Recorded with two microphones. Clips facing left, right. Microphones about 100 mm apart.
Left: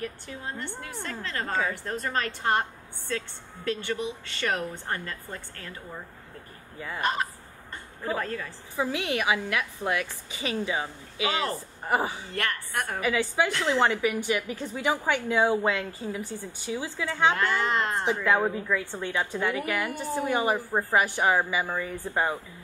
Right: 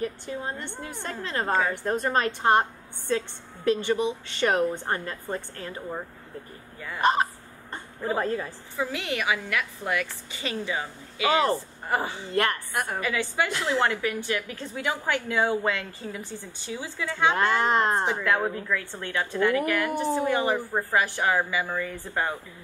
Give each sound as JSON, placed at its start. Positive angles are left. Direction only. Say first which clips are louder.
{"t": 0.0, "sound": "a woman's voice", "louder": "right 5 dB", "side_deg": -25}
{"t": 8.7, "sound": "a woman's voice", "louder": "left 2 dB", "side_deg": 15}
{"t": 12.7, "sound": "a woman's voice", "louder": "right 2 dB", "side_deg": -5}
{"t": 13.0, "sound": "a woman's voice", "louder": "left 4 dB", "side_deg": 15}
{"t": 13.5, "sound": "a woman's voice", "louder": "left 1 dB", "side_deg": -5}
{"t": 13.8, "sound": "a woman's voice", "louder": "left 2 dB", "side_deg": 15}
{"t": 17.3, "sound": "a woman's voice", "louder": "right 6 dB", "side_deg": -25}
{"t": 18.2, "sound": "a woman's voice", "louder": "left 1 dB", "side_deg": 15}